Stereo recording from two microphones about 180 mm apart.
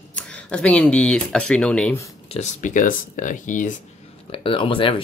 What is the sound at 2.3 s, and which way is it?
Speech, 40° left (ahead or behind).